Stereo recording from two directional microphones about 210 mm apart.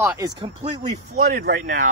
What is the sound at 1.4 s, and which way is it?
Speech, 40° right (ahead or behind).